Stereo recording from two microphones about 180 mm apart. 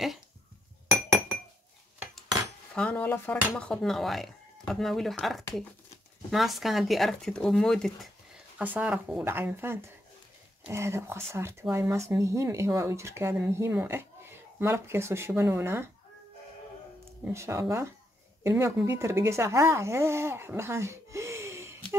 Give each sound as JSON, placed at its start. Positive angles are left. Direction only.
{"t": 2.7, "sound": "speech", "side_deg": 5}
{"t": 8.5, "sound": "speech", "side_deg": -10}
{"t": 17.2, "sound": "speech", "side_deg": -15}